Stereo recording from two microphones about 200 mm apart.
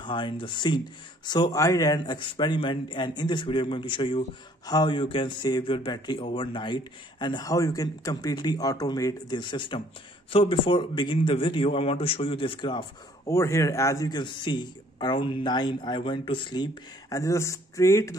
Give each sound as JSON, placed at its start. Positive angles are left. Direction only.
{"t": 0.0, "sound": "a man's voice", "side_deg": 25}